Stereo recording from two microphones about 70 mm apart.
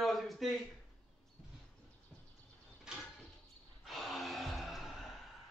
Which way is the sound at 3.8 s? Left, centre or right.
Centre.